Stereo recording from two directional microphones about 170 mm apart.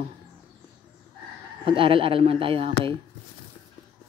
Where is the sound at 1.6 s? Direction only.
30° right (ahead or behind).